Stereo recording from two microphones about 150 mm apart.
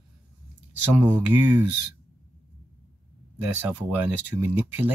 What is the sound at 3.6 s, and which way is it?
Speech, 10° right (ahead or behind).